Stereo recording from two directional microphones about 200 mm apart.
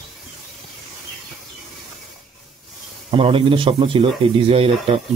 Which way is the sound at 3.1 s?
25° right (ahead or behind).